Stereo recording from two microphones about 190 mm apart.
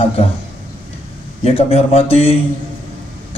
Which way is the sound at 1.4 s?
30° left (ahead or behind).